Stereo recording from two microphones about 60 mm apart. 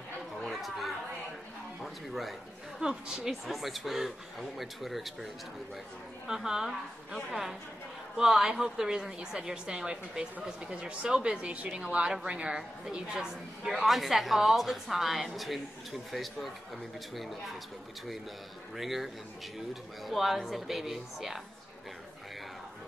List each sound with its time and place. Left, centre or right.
0.4 s chatter: centre
1.8 s a sound: centre
2.8 s a woman's voice: centre
18.8 s a woman's voice: centre